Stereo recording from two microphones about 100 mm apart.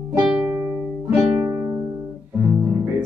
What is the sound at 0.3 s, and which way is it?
Music, 20° right (ahead or behind).